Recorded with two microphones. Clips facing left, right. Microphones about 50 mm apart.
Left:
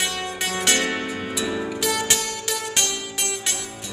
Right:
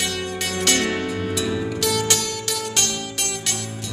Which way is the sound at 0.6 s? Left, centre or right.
Centre.